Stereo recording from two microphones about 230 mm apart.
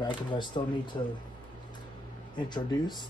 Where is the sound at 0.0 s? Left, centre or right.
Left.